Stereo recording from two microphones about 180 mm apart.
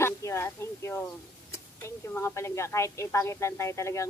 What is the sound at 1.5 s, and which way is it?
A woman's voice, 15° left (ahead or behind).